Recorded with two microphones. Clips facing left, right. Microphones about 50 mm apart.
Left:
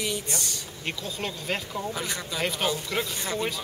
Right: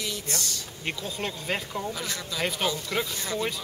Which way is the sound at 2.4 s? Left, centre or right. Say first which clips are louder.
Even; centre.